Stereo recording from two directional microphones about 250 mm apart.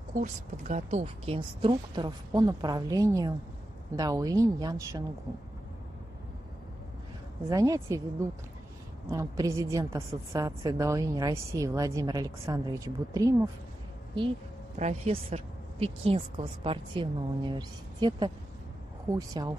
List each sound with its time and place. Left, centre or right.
0.1 s a woman's voice: right
7.4 s a woman's voice: centre
9.1 s a woman's voice: centre
14.8 s a woman's voice: right